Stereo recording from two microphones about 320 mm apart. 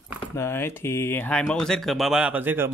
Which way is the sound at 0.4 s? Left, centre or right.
Centre.